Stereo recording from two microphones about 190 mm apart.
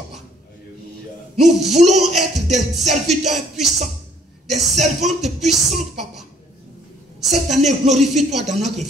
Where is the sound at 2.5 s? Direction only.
35° right (ahead or behind).